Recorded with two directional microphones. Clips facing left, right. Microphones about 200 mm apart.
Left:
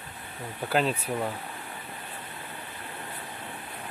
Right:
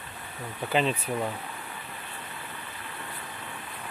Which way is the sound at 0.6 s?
5° left (ahead or behind).